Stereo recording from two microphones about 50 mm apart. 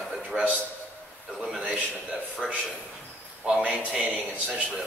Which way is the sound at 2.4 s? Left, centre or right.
Centre.